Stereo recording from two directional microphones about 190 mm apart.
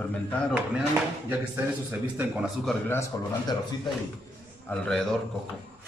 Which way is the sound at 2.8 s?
15° left (ahead or behind).